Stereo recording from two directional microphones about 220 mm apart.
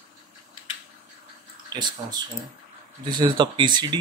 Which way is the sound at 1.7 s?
20° right (ahead or behind).